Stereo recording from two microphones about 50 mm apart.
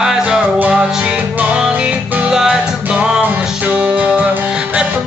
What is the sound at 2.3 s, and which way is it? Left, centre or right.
Music, centre.